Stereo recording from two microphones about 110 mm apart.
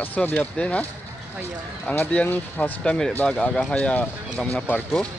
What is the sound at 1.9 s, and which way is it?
Speech, 15° left (ahead or behind).